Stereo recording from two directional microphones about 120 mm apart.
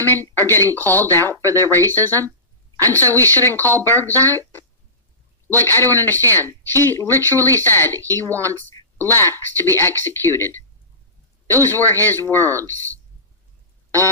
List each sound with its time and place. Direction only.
0.0 s speech: 20° left (ahead or behind)